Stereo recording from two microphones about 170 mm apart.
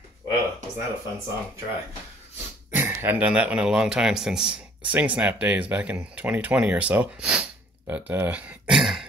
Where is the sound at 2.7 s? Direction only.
15° right (ahead or behind).